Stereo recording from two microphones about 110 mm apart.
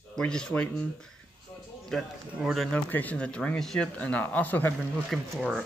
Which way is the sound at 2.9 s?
10° left (ahead or behind).